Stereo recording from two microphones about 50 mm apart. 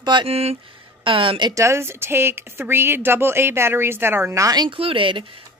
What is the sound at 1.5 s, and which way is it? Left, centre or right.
Speech, right.